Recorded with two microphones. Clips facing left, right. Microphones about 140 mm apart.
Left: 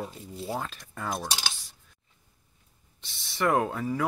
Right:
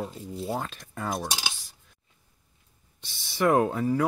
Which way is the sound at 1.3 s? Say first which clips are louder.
Even; 5° right (ahead or behind).